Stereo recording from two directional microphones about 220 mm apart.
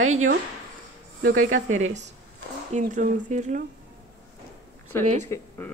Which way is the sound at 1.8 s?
30° right (ahead or behind).